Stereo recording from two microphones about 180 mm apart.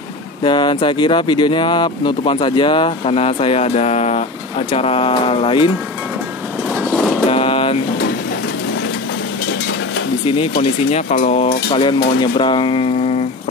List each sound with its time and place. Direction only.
0.4 s speech: 25° left (ahead or behind)
7.2 s a sound: 30° left (ahead or behind)
10.6 s speech: 35° left (ahead or behind)